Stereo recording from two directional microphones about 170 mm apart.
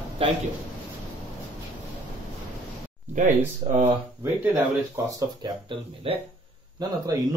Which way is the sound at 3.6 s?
35° right (ahead or behind).